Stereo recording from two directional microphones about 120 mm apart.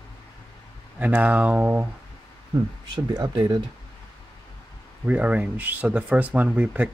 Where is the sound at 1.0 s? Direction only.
15° right (ahead or behind).